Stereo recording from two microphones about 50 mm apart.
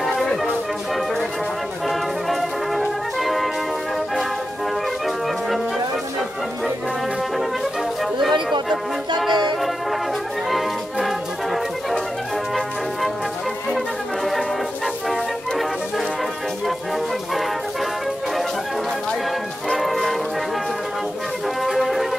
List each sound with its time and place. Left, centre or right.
0.0 s music: centre
1.9 s music: centre
8.0 s music: centre
13.7 s music: centre
19.7 s music: centre
21.6 s music: centre